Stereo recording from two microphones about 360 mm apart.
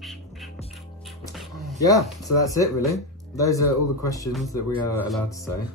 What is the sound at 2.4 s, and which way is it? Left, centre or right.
Speech, centre.